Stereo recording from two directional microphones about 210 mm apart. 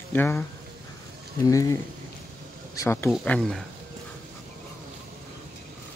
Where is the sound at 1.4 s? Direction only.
15° left (ahead or behind).